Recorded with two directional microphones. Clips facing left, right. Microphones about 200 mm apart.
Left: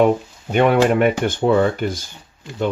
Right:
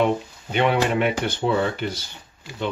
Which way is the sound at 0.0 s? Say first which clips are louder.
Left 6 dB; 45° left (ahead or behind).